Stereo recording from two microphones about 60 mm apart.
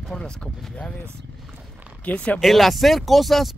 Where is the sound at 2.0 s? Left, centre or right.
Left.